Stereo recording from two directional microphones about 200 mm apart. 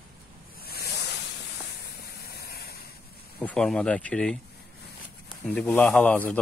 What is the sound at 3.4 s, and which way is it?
Speech, 5° left (ahead or behind).